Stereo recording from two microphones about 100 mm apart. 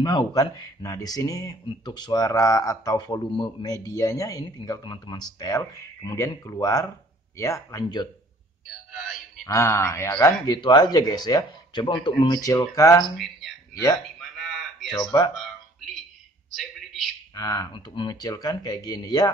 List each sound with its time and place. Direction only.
0.0 s speech: 45° left (ahead or behind)
2.9 s speech: 50° left (ahead or behind)
3.7 s speech: 35° left (ahead or behind)
7.8 s speech: 45° left (ahead or behind)
8.6 s music: centre (ahead or behind)
9.5 s a sound: 30° left (ahead or behind)
10.2 s speech: 40° left (ahead or behind)
14.2 s a sound: centre (ahead or behind)
14.9 s speech: 35° left (ahead or behind)
15.3 s a sound: centre (ahead or behind)
17.3 s speech: 40° left (ahead or behind)